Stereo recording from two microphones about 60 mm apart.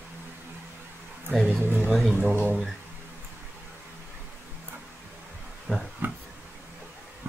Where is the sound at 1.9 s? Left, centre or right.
Centre.